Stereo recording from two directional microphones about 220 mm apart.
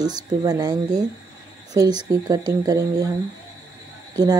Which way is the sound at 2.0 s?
15° right (ahead or behind).